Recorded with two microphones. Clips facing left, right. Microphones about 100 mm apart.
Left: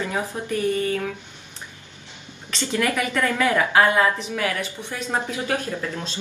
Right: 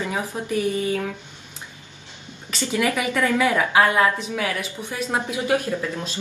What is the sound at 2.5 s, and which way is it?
A woman's voice, 10° right (ahead or behind).